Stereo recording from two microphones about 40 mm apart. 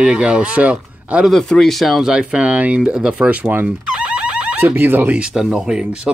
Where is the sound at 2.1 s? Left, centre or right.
Right.